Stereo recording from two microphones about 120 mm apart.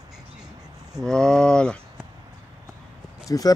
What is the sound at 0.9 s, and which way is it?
Speech, 5° left (ahead or behind).